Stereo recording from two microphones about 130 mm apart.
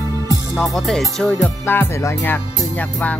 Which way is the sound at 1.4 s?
15° left (ahead or behind).